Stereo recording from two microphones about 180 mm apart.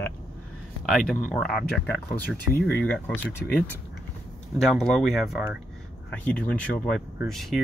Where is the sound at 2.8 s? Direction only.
10° left (ahead or behind).